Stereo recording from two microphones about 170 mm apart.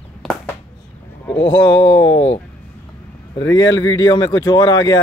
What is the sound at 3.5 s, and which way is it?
Speech, 90° left.